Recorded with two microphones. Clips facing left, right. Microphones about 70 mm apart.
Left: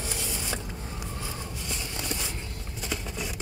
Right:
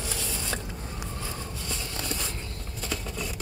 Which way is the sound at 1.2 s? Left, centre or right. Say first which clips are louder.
Even; centre.